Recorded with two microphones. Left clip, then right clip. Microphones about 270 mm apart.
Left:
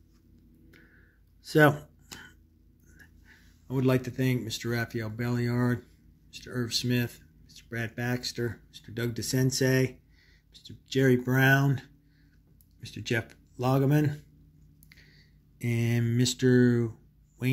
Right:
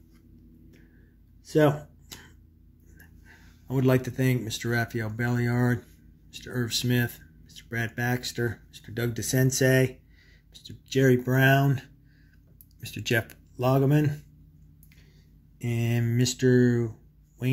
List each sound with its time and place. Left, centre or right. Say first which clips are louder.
1.4 s a sound: left 1 dB; centre
3.0 s speech: right 2 dB; centre
15.6 s speech: even; centre